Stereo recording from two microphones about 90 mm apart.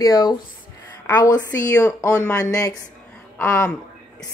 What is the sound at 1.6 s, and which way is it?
Speech, 35° left (ahead or behind).